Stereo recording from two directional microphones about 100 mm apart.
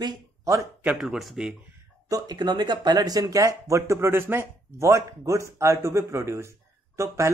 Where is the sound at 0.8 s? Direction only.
5° right (ahead or behind).